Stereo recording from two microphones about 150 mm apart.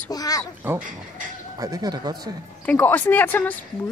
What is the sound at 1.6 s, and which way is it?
Speech, 25° right (ahead or behind).